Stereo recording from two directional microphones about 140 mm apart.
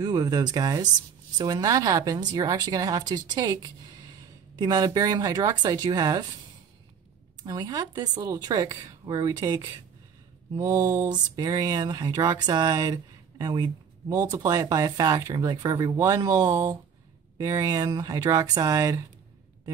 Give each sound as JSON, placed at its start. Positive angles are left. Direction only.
{"t": 0.0, "sound": "speech", "side_deg": -30}
{"t": 7.4, "sound": "speech", "side_deg": -25}
{"t": 10.6, "sound": "speech", "side_deg": -20}